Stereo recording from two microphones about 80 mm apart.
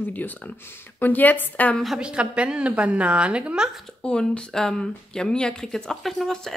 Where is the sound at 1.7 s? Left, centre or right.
Centre.